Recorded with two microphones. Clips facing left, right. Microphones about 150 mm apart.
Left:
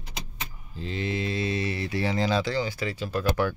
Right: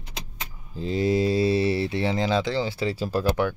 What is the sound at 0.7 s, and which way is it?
Speech, 40° right (ahead or behind).